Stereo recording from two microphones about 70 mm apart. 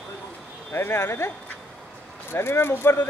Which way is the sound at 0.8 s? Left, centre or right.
Left.